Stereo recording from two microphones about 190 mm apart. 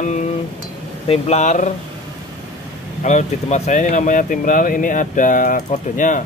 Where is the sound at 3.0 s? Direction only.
40° left (ahead or behind).